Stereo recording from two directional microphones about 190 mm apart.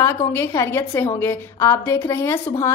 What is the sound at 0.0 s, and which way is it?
A woman's voice, 15° left (ahead or behind).